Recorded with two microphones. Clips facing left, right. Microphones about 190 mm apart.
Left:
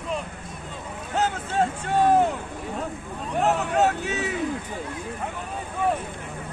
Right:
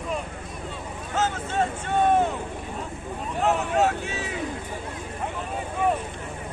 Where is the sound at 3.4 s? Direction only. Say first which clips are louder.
Left 1 dB; 40° left (ahead or behind).